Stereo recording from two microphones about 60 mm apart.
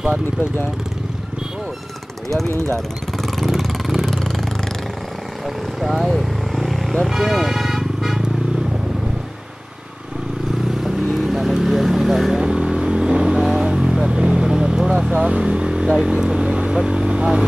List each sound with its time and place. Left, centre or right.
2.5 s speech: right
3.2 s vehicle: centre
5.8 s vehicle: centre
11.1 s vehicle: centre
12.4 s vehicle: centre